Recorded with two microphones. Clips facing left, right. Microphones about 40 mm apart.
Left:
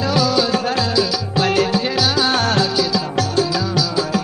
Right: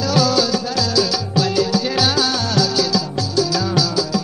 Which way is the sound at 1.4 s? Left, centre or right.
Left.